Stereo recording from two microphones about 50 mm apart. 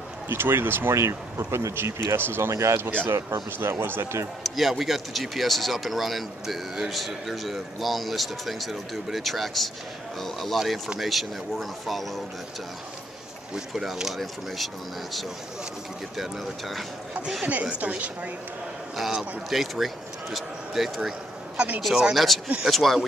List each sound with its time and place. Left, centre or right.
0.3 s speech: right
0.9 s speech: right
2.5 s speech: right
3.5 s speech: right
4.4 s speech: centre
13.7 s speech: centre
16.2 s speech: centre
17.5 s speech: right
19.5 s speech: centre
21.5 s speech: right
22.1 s speech: centre